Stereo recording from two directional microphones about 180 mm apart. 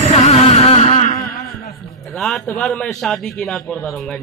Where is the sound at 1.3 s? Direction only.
55° left (ahead or behind).